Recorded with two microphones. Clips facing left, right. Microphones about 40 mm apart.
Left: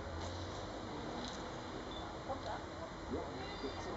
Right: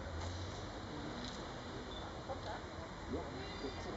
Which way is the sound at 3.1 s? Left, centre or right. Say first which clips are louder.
Left 1 dB; centre.